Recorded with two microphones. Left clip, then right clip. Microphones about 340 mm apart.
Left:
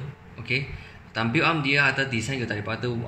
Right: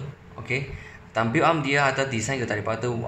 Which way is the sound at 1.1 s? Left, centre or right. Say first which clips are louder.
Right 2 dB; right.